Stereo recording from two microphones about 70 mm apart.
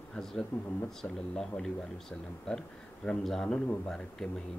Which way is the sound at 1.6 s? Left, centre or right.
Centre.